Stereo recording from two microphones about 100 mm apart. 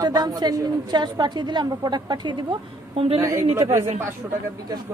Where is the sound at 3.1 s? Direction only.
30° right (ahead or behind).